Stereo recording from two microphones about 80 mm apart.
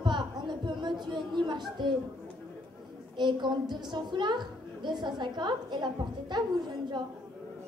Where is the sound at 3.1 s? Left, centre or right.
Right.